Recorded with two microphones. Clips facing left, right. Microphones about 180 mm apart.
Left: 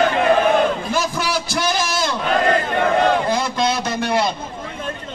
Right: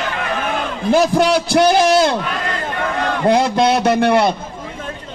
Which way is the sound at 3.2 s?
65° right (ahead or behind).